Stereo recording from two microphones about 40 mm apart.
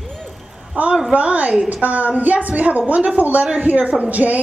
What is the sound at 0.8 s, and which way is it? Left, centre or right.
A woman's voice, right.